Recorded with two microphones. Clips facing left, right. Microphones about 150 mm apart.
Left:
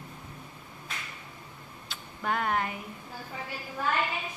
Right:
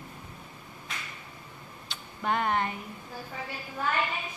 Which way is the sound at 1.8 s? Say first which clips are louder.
Right 1 dB; centre (ahead or behind).